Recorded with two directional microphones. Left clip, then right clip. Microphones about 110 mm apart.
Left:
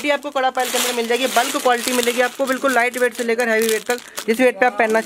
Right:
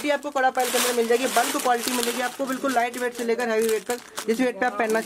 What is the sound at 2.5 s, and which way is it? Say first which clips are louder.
Speech: left 7 dB; 40° left (ahead or behind).